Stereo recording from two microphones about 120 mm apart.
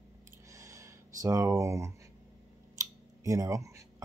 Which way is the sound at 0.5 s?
25° right (ahead or behind).